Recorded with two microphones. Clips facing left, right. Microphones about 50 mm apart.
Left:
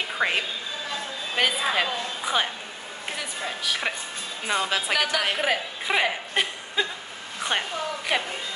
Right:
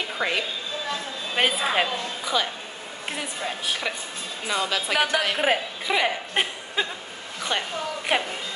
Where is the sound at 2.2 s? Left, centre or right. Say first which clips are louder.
Even; left.